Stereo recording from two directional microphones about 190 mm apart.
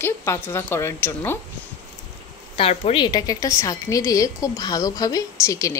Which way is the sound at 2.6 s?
30° left (ahead or behind).